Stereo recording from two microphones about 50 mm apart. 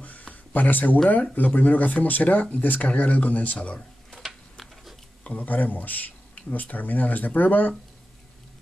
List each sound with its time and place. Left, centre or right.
0.0 s a sound: left
1.3 s speech: left
5.2 s speech: left